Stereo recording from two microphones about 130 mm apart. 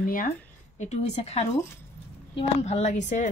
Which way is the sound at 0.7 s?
60° left (ahead or behind).